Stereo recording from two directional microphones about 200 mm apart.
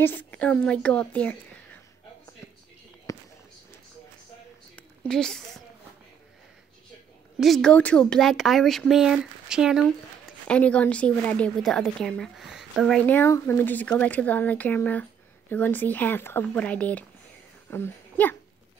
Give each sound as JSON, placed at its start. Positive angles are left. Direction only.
{"t": 0.0, "sound": "a woman's voice", "side_deg": 10}
{"t": 3.1, "sound": "basketball bounce", "side_deg": 15}
{"t": 4.7, "sound": "a woman's voice", "side_deg": 5}
{"t": 7.3, "sound": "a woman's voice", "side_deg": 0}